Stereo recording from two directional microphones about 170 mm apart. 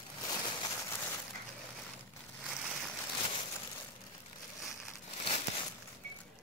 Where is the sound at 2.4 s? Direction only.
5° right (ahead or behind).